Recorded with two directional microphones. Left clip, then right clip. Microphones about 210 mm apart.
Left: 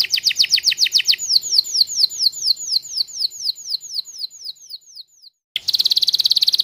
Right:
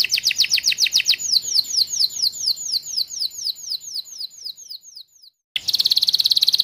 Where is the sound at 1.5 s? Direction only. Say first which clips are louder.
Left 3 dB; 20° left (ahead or behind).